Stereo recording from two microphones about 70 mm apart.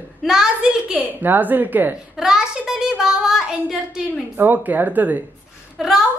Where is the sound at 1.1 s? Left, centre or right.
Right.